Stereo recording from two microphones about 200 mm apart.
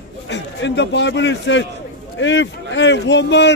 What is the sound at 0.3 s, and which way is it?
A man's voice, 60° left (ahead or behind).